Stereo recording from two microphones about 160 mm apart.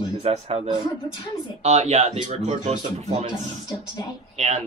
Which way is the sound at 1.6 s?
45° right (ahead or behind).